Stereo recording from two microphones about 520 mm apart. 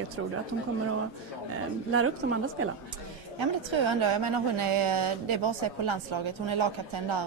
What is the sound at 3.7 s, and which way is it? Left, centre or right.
A woman's voice, right.